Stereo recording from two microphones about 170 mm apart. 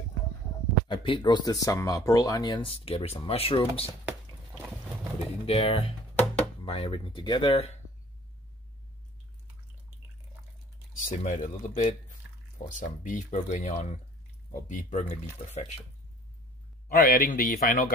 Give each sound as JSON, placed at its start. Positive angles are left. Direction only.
{"t": 0.8, "sound": "speech", "side_deg": 30}
{"t": 5.5, "sound": "speech", "side_deg": 35}
{"t": 6.1, "sound": "music", "side_deg": 5}
{"t": 6.6, "sound": "speech", "side_deg": 30}
{"t": 11.0, "sound": "speech", "side_deg": 50}
{"t": 16.9, "sound": "speech", "side_deg": 60}